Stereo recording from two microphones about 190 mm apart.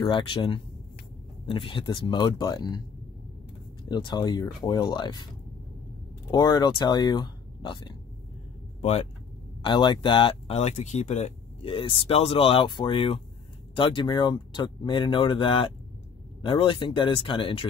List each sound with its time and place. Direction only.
0.0 s speech: 25° left (ahead or behind)
3.9 s speech: 25° left (ahead or behind)
6.3 s speech: 20° left (ahead or behind)
9.6 s speech: 25° left (ahead or behind)